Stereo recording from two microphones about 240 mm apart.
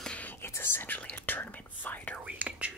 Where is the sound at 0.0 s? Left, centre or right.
Centre.